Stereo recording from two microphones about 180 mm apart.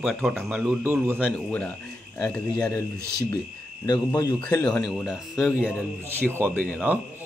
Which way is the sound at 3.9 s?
20° left (ahead or behind).